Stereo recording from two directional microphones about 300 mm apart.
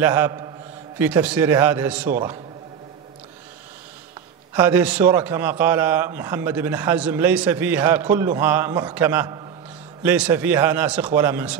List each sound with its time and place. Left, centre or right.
0.0 s a man's voice: centre
4.6 s a man's voice: centre